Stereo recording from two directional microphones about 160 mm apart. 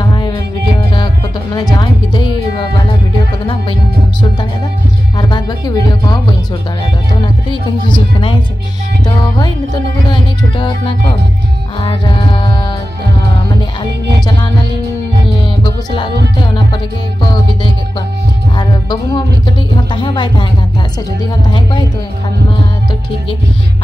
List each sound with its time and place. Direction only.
0.0 s music: 30° left (ahead or behind)
5.1 s music: 25° left (ahead or behind)
7.9 s speech: 35° left (ahead or behind)
11.8 s music: 30° left (ahead or behind)
15.6 s music: 30° left (ahead or behind)
18.6 s music: 25° left (ahead or behind)
19.9 s a woman's voice: 30° left (ahead or behind)